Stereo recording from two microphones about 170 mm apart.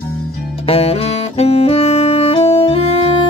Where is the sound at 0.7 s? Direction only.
35° left (ahead or behind).